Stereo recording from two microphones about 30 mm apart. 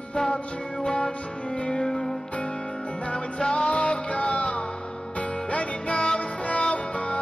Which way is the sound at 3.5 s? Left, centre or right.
Left.